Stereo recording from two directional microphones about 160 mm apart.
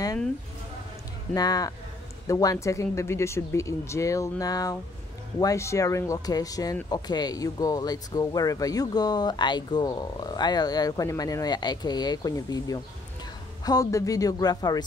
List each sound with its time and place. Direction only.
1.3 s speech: 25° left (ahead or behind)